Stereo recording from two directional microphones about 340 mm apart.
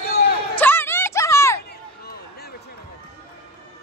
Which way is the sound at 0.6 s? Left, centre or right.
Centre.